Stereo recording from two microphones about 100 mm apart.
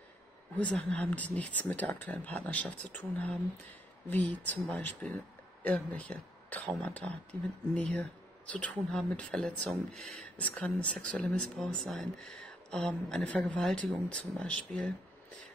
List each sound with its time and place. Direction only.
0.6 s speech: 15° left (ahead or behind)
10.5 s speech: 10° left (ahead or behind)
11.6 s speech: centre (ahead or behind)
13.6 s speech: centre (ahead or behind)
14.4 s speech: 10° left (ahead or behind)